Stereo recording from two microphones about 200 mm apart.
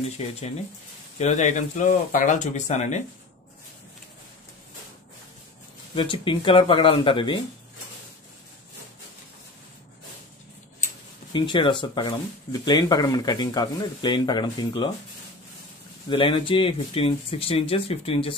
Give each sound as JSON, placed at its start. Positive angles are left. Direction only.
{"t": 0.2, "sound": "speech", "side_deg": 30}
{"t": 5.9, "sound": "speech", "side_deg": 25}
{"t": 11.3, "sound": "speech", "side_deg": 25}
{"t": 16.1, "sound": "speech", "side_deg": 25}